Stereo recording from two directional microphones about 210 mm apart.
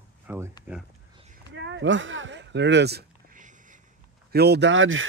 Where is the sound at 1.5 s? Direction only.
60° right (ahead or behind); by 3.8 s 35° right (ahead or behind).